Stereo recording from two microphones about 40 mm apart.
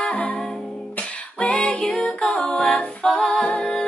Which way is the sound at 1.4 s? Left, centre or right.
Left.